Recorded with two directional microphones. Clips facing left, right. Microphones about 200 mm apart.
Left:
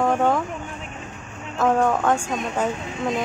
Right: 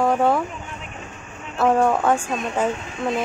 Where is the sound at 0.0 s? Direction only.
10° right (ahead or behind).